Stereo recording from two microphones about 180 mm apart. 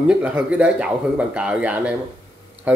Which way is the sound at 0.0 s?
5° right (ahead or behind).